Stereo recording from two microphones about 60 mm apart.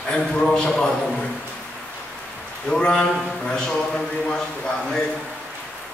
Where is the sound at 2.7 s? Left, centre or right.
Centre.